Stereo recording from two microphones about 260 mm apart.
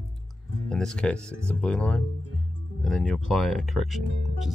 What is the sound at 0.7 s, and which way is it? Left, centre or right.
Speech, centre.